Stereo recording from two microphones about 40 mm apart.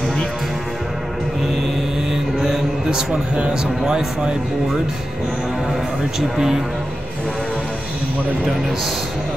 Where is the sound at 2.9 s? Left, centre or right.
Centre.